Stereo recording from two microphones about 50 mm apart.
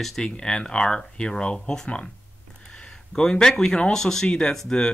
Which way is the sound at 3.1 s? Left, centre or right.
Centre.